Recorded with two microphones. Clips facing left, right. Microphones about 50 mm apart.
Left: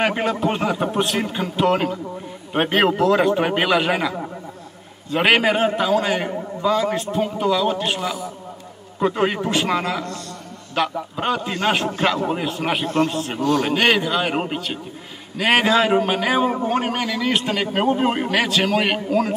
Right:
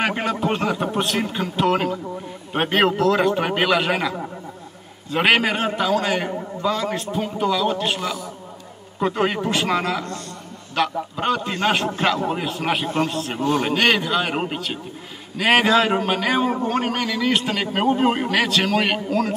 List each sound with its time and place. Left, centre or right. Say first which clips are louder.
0.0 s a man's voice: left 2 dB; centre
12.8 s a man's voice: left 2 dB; centre
13.4 s a man's voice: left 2 dB; right
13.7 s a man's voice: left 1 dB; centre